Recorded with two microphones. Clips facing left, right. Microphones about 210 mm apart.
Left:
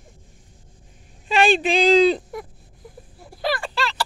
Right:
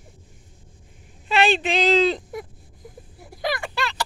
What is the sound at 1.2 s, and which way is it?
Speech, 15° left (ahead or behind).